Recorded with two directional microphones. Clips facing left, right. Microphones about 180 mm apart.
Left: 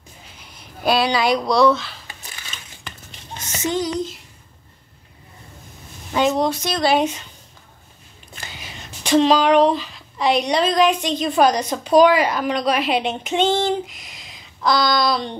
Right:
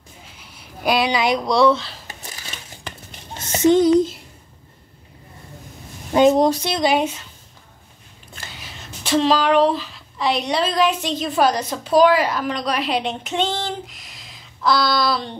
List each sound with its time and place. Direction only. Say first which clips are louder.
0.6 s speech: left 1 dB; 15° right (ahead or behind)
3.5 s speech: right 9 dB; 55° right (ahead or behind)
6.4 s speech: right 3 dB; 35° right (ahead or behind)
6.7 s speech: left 1 dB; 15° right (ahead or behind)
8.4 s a woman's voice: left 1 dB; centre (ahead or behind)